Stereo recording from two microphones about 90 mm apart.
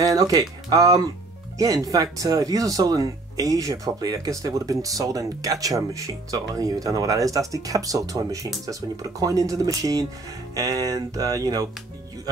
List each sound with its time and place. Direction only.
0.0 s speech: 45° right (ahead or behind)